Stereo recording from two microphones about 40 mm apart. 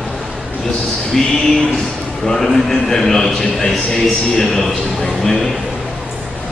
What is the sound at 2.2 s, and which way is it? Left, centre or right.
A man's voice, centre.